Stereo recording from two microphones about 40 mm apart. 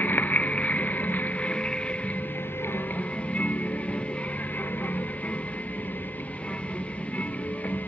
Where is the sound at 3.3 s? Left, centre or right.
Left.